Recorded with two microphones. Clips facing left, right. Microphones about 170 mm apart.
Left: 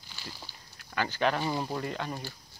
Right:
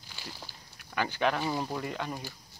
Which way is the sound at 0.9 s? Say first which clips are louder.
Even; 15° right (ahead or behind).